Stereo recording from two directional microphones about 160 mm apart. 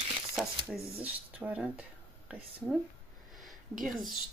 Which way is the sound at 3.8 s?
Centre (ahead or behind).